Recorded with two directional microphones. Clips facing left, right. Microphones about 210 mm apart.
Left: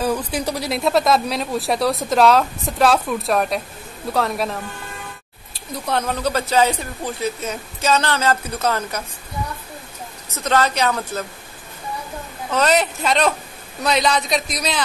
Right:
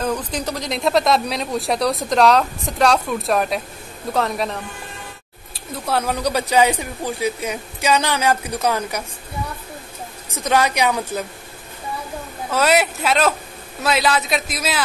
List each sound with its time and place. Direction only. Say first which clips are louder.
0.0 s speech: left 2 dB; 10° left (ahead or behind)
5.9 s speech: right 1 dB; 10° right (ahead or behind)
10.3 s speech: even; 15° right (ahead or behind)
12.4 s speech: even; 10° right (ahead or behind)